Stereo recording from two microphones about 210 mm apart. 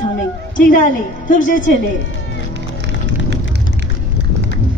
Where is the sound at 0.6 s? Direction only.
40° left (ahead or behind).